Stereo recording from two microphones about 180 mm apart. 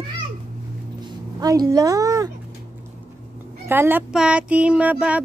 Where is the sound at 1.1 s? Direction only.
20° right (ahead or behind).